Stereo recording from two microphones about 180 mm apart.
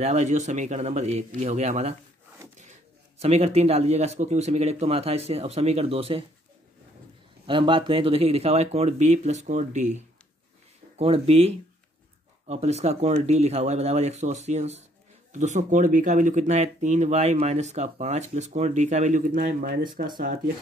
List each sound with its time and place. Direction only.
0.0 s speech: 40° right (ahead or behind)
3.2 s speech: 35° right (ahead or behind)
7.4 s speech: 30° right (ahead or behind); by 19.8 s 50° right (ahead or behind)